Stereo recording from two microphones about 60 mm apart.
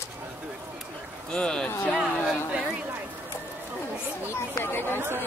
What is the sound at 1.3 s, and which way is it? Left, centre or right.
Speech, centre.